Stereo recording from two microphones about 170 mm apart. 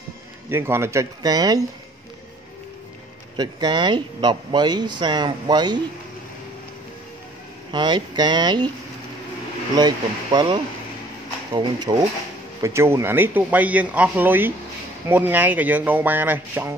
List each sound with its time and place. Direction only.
0.5 s speech: 15° right (ahead or behind)
3.3 s speech: 25° right (ahead or behind)
7.7 s speech: 25° right (ahead or behind)
9.8 s speech: 25° right (ahead or behind)
12.6 s speech: 15° right (ahead or behind)